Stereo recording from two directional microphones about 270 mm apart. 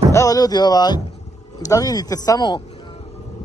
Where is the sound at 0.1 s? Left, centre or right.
Centre.